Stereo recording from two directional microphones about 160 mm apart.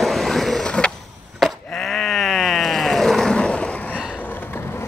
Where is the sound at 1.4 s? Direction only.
Centre (ahead or behind).